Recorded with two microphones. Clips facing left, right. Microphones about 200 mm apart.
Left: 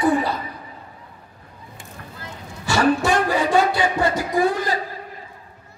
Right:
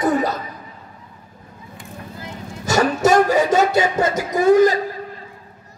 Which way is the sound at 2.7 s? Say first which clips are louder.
Right 2 dB; 45° right (ahead or behind).